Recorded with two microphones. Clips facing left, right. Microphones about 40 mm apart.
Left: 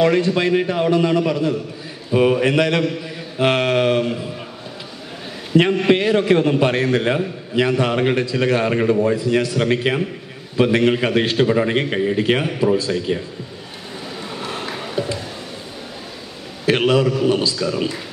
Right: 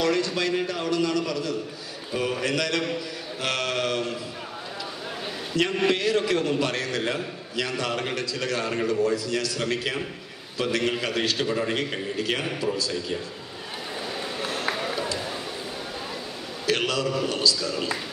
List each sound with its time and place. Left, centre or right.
0.0 s a man's voice: left
5.6 s a man's voice: left
16.6 s a man's voice: left